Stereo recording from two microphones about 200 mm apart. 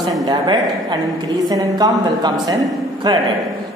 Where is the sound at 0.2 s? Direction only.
20° right (ahead or behind).